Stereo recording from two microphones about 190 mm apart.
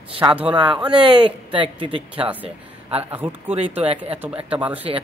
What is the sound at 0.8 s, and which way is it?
Speech, 25° right (ahead or behind).